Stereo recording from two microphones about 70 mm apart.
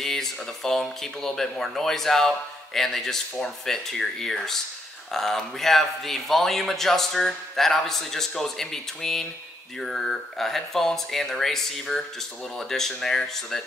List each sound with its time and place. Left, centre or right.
0.0 s speech: centre